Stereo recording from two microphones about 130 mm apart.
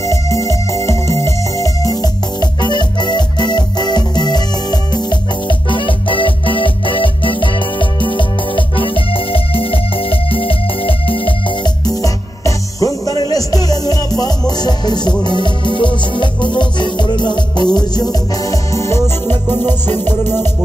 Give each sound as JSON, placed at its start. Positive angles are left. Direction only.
{"t": 0.0, "sound": "music", "side_deg": 25}